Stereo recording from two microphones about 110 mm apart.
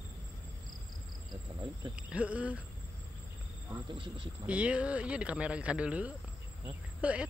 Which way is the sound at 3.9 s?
50° right (ahead or behind).